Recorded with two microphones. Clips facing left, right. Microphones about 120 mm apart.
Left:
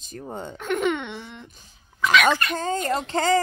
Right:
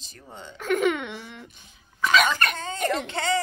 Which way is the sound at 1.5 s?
35° left (ahead or behind).